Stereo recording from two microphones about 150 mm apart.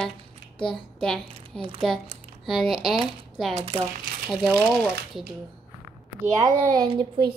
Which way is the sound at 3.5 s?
45° right (ahead or behind).